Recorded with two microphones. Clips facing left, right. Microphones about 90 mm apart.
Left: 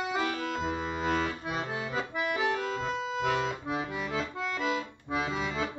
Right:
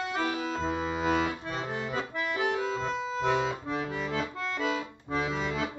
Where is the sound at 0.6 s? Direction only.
5° right (ahead or behind).